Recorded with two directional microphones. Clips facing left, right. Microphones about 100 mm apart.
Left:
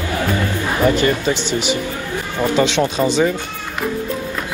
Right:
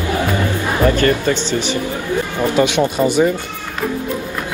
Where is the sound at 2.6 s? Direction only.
15° right (ahead or behind).